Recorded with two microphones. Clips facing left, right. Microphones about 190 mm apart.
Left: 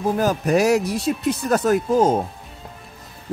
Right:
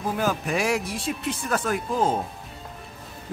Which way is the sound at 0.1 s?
40° left (ahead or behind).